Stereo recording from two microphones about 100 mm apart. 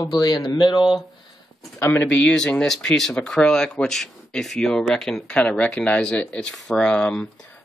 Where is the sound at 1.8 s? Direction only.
15° left (ahead or behind).